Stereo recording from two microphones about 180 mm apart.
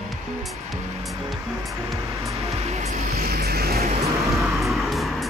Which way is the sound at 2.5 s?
35° right (ahead or behind).